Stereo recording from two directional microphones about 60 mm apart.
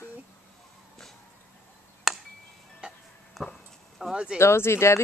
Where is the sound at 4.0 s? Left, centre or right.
Centre.